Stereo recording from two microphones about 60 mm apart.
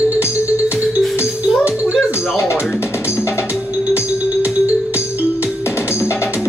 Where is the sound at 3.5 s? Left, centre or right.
Right.